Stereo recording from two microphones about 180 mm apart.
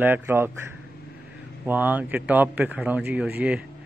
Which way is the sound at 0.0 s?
10° right (ahead or behind).